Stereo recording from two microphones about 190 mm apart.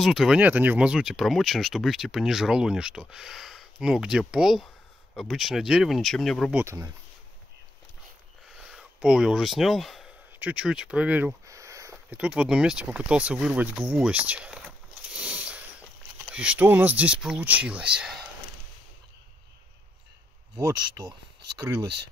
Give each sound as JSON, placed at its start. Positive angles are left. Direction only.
{"t": 0.0, "sound": "speech", "side_deg": 0}
{"t": 6.6, "sound": "speech", "side_deg": -15}
{"t": 8.5, "sound": "speech", "side_deg": -5}
{"t": 15.1, "sound": "a sound", "side_deg": -5}
{"t": 16.3, "sound": "speech", "side_deg": -5}
{"t": 20.5, "sound": "speech", "side_deg": -20}